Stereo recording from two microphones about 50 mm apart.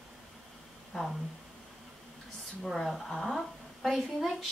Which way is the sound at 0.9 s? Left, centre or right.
Centre.